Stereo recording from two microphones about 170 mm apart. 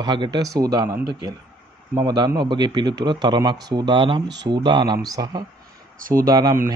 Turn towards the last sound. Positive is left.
turn(degrees=-20)  # may be behind; listen again after turning